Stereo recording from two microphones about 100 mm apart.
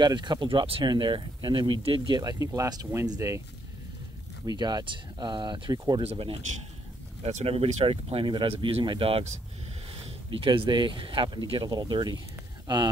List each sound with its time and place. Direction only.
0.0 s speech: 50° right (ahead or behind); by 0.8 s 65° right (ahead or behind)
0.8 s speech: 55° right (ahead or behind); by 3.4 s 30° right (ahead or behind)
4.5 s speech: 45° right (ahead or behind)
6.0 s speech: 65° right (ahead or behind)
7.2 s speech: 90° right; by 9.2 s 60° right (ahead or behind)
10.3 s speech: 60° right (ahead or behind); by 12.2 s 45° right (ahead or behind)